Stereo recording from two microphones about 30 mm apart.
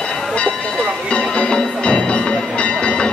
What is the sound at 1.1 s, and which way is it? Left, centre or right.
Music, left.